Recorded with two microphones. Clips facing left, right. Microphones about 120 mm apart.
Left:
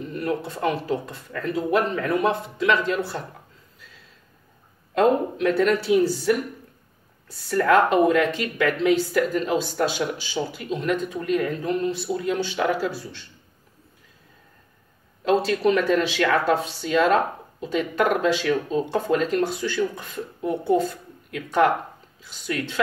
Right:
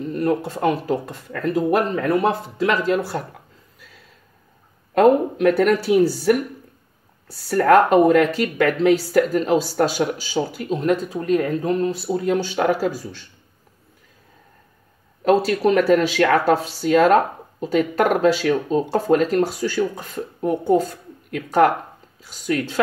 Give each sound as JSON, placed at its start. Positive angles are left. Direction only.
{"t": 0.1, "sound": "speech", "side_deg": -40}
{"t": 5.5, "sound": "speech", "side_deg": -10}
{"t": 5.9, "sound": "speech", "side_deg": -45}
{"t": 7.4, "sound": "speech", "side_deg": -45}
{"t": 15.2, "sound": "speech", "side_deg": -40}